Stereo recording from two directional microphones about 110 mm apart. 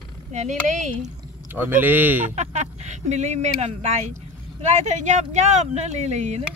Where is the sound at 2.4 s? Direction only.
90° right.